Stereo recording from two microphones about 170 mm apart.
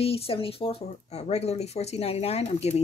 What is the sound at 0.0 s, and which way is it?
Speech, 35° left (ahead or behind).